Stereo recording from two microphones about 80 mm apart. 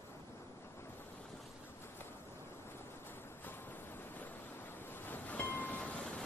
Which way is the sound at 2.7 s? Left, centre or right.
Left.